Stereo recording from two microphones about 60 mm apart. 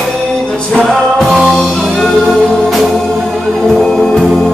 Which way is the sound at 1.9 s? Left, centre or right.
Centre.